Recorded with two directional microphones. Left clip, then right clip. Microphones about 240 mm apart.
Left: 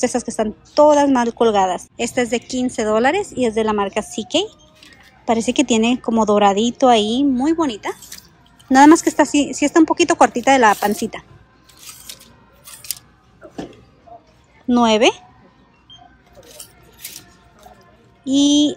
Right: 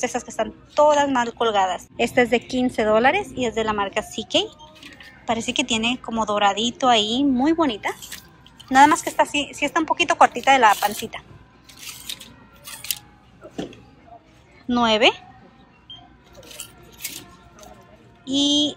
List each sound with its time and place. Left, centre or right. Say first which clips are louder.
0.0 s a woman's voice: left 5 dB; centre
14.7 s a woman's voice: left 3 dB; centre
18.2 s a woman's voice: left 4 dB; centre